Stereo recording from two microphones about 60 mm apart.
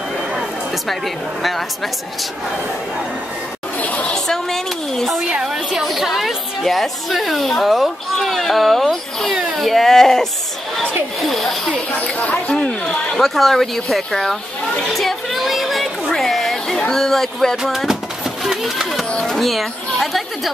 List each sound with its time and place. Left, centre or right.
0.8 s speech: centre
3.8 s chatter: left
4.1 s speech: centre
5.3 s a woman's voice: centre
12.0 s speech: left
13.2 s speech: centre
14.9 s a sound: centre
17.6 s a sound: centre
19.0 s speech: centre
19.3 s speech: centre